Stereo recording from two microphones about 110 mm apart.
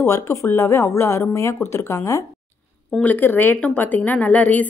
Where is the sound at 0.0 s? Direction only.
25° left (ahead or behind).